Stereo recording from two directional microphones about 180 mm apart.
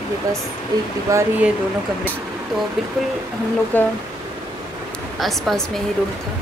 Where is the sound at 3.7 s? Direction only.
10° left (ahead or behind).